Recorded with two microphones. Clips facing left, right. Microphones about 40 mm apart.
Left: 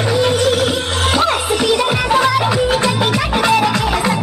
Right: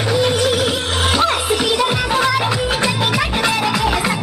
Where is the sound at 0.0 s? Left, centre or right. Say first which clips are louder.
Left 2 dB; centre.